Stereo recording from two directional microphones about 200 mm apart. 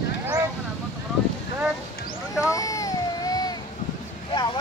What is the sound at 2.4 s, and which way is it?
Baby cry, 15° left (ahead or behind).